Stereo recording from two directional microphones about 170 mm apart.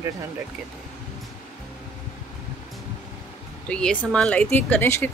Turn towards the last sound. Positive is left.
turn(degrees=10)  # may be behind; listen again after turning